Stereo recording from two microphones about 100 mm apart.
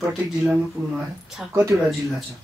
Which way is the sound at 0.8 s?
35° right (ahead or behind).